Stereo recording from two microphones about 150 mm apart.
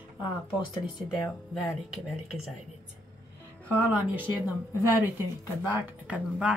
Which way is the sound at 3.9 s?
10° right (ahead or behind).